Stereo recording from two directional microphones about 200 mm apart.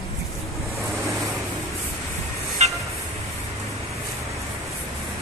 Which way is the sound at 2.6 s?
35° right (ahead or behind).